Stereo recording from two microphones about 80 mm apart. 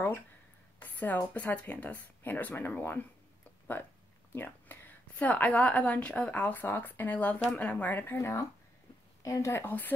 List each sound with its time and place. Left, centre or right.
0.7 s a woman's voice: left